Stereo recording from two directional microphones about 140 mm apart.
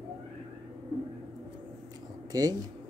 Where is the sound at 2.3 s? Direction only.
25° right (ahead or behind).